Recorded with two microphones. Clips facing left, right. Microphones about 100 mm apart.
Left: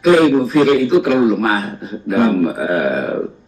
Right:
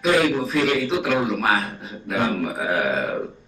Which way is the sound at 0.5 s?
35° left (ahead or behind).